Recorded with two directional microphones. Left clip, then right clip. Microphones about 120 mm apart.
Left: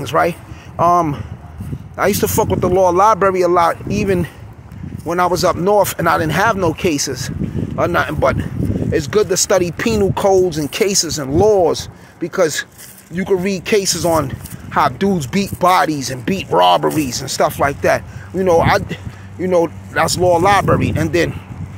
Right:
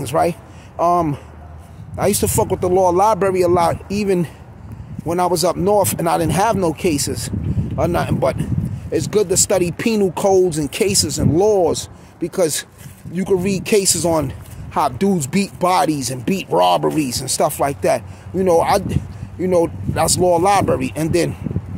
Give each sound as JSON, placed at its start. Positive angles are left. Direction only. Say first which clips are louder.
{"t": 0.0, "sound": "a man's voice", "louder": "left 2 dB", "side_deg": -25}
{"t": 15.4, "sound": "speech", "louder": "left 3 dB", "side_deg": -20}
{"t": 17.8, "sound": "speech", "louder": "left 2 dB", "side_deg": -20}